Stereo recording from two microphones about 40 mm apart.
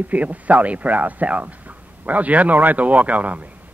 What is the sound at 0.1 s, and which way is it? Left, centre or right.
Speech, right.